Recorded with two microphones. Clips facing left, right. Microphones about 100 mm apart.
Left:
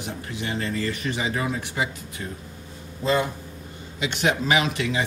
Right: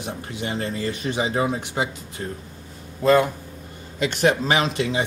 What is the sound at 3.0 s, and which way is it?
Speech, 55° right (ahead or behind).